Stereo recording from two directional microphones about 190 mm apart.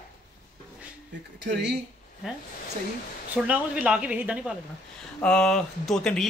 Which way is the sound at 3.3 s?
5° right (ahead or behind).